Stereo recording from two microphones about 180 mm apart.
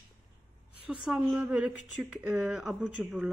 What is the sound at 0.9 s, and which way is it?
Speech, 5° right (ahead or behind).